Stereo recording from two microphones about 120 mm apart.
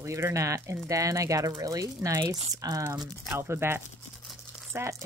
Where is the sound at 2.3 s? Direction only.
65° right (ahead or behind).